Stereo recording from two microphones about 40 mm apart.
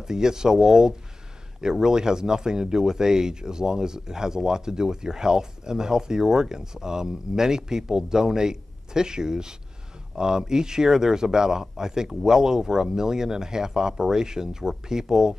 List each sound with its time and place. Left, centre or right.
0.0 s speech: centre